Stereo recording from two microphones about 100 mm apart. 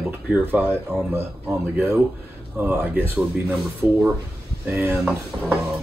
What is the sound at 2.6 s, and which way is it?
Speech, 20° right (ahead or behind).